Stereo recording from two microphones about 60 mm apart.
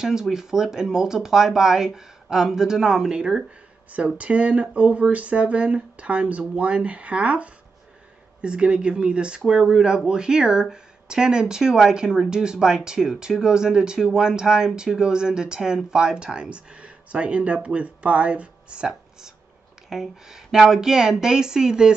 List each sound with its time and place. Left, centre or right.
0.0 s speech: centre